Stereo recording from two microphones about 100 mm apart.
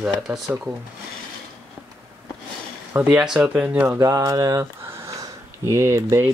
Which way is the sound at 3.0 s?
5° right (ahead or behind).